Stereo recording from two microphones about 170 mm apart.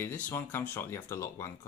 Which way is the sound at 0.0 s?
15° left (ahead or behind).